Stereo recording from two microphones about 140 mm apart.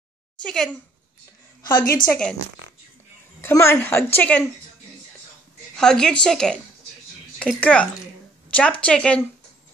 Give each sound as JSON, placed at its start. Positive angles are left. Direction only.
{"t": 0.4, "sound": "a woman's voice", "side_deg": 5}
{"t": 1.8, "sound": "a woman's voice", "side_deg": 80}
{"t": 2.0, "sound": "a woman's voice", "side_deg": 5}
{"t": 3.3, "sound": "a woman's voice", "side_deg": 20}
{"t": 5.8, "sound": "a woman's voice", "side_deg": 5}
{"t": 7.6, "sound": "a woman's voice", "side_deg": 10}